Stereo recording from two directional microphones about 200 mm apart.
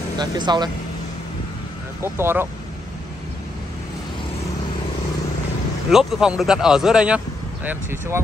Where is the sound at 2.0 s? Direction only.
10° right (ahead or behind).